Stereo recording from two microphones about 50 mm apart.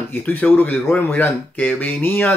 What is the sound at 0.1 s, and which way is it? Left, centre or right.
Speech, left.